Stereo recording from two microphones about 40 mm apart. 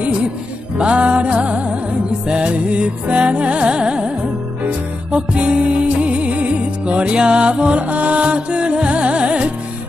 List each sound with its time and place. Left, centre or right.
0.7 s music: right